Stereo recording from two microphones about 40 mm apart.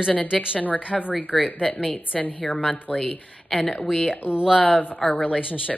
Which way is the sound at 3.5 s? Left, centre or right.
Centre.